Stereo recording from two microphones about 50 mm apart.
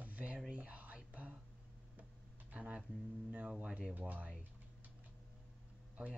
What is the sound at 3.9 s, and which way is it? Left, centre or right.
Speech, right.